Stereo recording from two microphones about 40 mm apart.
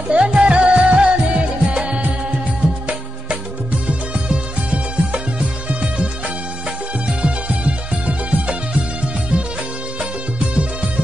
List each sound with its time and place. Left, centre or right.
0.1 s music: right
4.1 s music: right